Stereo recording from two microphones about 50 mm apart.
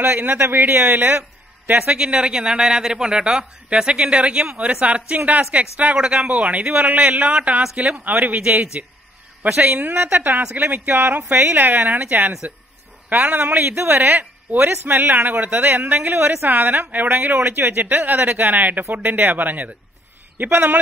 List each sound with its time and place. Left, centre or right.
0.0 s speech: right
1.9 s a man's voice: right
13.6 s speech: right
17.6 s speech: right
17.8 s speech: right